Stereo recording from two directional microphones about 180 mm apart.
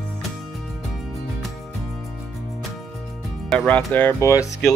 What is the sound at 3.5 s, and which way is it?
Speech, centre (ahead or behind).